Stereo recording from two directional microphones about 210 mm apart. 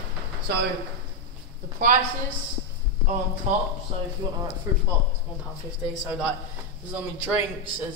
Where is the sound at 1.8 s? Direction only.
40° right (ahead or behind).